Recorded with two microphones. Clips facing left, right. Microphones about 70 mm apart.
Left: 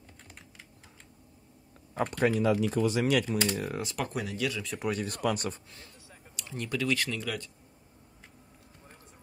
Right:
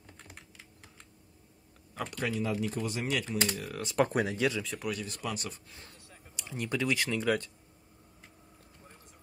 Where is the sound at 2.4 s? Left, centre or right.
Left.